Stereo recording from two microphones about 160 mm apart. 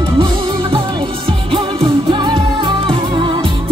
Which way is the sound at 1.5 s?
30° right (ahead or behind).